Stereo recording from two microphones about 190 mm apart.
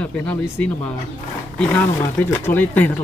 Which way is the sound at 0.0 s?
10° left (ahead or behind).